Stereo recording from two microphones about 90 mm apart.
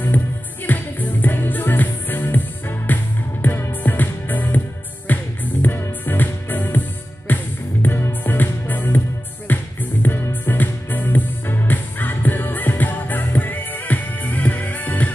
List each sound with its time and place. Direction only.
0.7 s music: 20° left (ahead or behind)